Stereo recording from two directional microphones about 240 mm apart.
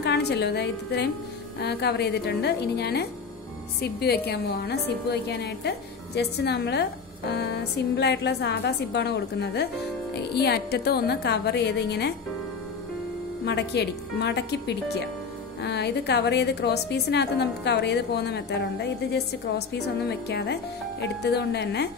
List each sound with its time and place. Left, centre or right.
0.0 s a woman's voice: left
13.5 s a woman's voice: left